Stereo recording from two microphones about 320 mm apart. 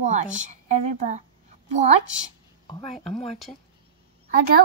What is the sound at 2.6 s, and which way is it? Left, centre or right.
Speech, centre.